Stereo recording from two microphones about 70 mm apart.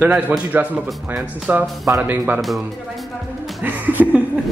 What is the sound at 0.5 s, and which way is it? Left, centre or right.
A woman's voice, right.